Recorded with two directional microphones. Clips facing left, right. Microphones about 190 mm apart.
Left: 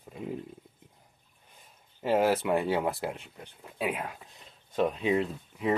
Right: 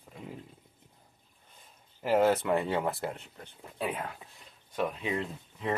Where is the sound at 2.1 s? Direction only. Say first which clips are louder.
Even; 10° left (ahead or behind).